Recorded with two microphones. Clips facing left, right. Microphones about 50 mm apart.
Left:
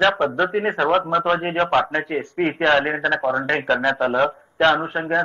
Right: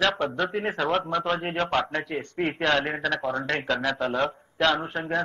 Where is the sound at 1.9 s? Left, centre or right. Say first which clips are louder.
Left 6 dB; left.